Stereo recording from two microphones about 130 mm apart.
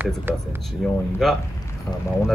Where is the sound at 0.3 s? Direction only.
15° right (ahead or behind).